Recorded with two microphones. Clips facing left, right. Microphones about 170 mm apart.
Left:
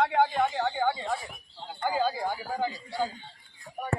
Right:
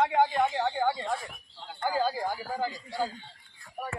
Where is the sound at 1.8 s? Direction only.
5° right (ahead or behind).